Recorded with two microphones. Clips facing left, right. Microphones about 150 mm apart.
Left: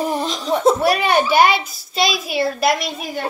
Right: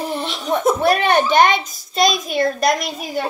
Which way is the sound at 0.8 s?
10° left (ahead or behind).